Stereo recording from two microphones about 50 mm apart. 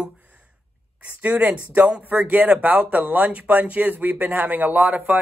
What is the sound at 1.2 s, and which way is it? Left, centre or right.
Speech, right.